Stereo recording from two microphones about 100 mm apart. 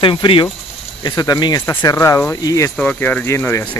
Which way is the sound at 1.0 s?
45° left (ahead or behind).